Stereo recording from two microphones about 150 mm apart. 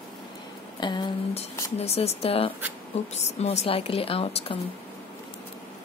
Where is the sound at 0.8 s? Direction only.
30° left (ahead or behind).